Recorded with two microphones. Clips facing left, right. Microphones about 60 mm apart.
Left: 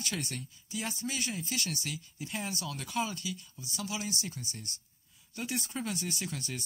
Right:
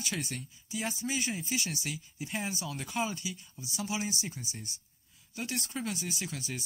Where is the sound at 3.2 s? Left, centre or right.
Centre.